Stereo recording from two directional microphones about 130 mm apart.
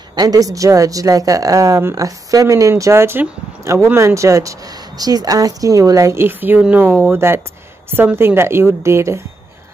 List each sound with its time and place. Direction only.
0.1 s speech: 30° right (ahead or behind)